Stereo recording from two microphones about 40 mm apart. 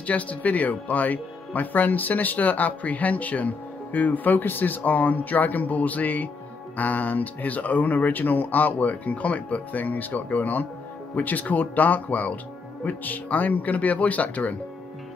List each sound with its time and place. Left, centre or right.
0.0 s speech: left